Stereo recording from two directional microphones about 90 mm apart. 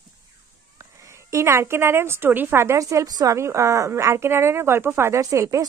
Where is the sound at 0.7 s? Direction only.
35° right (ahead or behind).